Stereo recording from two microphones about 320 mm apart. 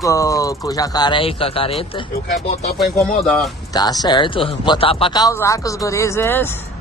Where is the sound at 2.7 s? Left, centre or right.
Centre.